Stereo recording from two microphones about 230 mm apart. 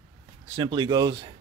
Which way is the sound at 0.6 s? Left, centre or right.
Right.